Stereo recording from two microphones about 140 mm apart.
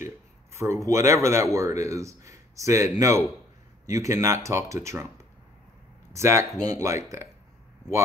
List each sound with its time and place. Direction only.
0.0 s speech: 20° right (ahead or behind)